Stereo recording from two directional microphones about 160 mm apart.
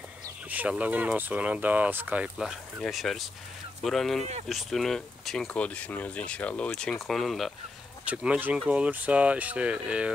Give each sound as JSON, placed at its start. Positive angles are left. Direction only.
{"t": 0.5, "sound": "speech", "side_deg": -10}
{"t": 4.2, "sound": "speech", "side_deg": -45}
{"t": 4.5, "sound": "speech", "side_deg": 0}